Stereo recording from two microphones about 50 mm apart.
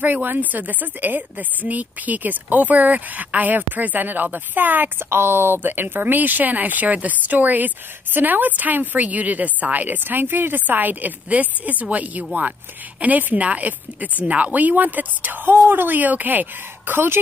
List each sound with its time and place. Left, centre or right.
0.0 s speech: right